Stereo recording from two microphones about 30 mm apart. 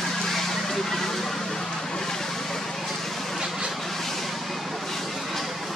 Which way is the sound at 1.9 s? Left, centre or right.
Centre.